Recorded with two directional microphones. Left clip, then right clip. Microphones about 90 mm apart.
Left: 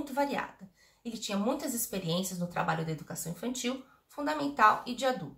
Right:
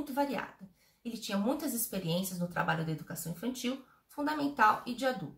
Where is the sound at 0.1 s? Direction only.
25° left (ahead or behind).